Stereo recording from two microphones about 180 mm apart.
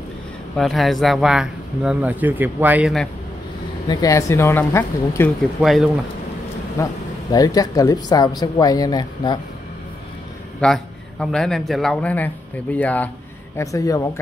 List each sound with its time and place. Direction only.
0.6 s speech: centre (ahead or behind)
3.8 s speech: 20° left (ahead or behind)
5.4 s speech: centre (ahead or behind)
6.8 s speech: 20° left (ahead or behind)
10.6 s a man's voice: 5° left (ahead or behind)